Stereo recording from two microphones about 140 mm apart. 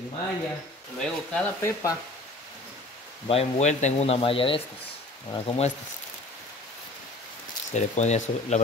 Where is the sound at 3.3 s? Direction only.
50° left (ahead or behind).